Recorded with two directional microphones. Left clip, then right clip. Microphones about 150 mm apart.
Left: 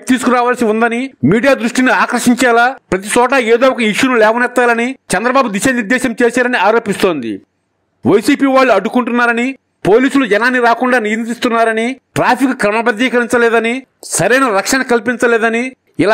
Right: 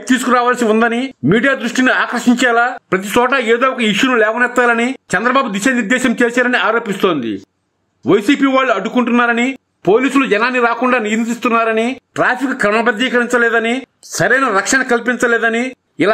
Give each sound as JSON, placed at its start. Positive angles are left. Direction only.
{"t": 0.1, "sound": "speech", "side_deg": 35}